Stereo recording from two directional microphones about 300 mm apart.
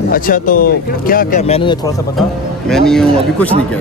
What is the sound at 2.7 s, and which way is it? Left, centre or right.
Speech, centre.